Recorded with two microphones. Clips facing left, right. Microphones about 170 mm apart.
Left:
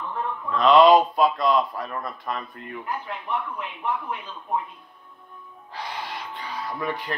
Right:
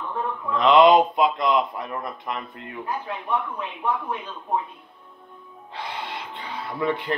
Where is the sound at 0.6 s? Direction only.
20° right (ahead or behind).